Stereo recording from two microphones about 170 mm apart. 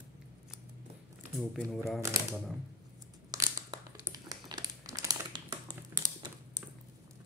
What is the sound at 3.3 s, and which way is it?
Crumpling, 20° right (ahead or behind).